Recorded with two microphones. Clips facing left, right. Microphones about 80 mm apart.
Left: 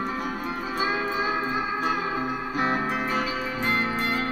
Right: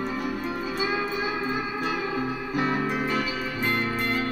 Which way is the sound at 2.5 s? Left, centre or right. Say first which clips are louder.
Even; left.